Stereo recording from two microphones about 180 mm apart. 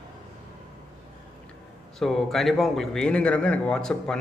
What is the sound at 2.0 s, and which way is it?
A man's voice, centre (ahead or behind).